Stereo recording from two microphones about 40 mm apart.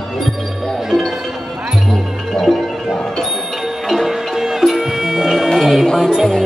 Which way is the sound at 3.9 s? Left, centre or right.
Centre.